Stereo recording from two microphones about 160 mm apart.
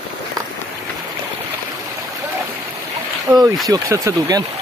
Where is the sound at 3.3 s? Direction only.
15° right (ahead or behind).